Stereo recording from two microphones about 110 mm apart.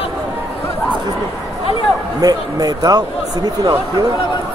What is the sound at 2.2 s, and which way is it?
Speech, 35° right (ahead or behind).